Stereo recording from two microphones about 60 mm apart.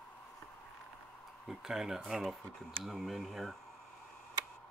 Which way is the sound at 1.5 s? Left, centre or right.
Centre.